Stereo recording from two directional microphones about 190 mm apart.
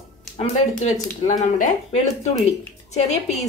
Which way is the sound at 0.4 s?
35° left (ahead or behind).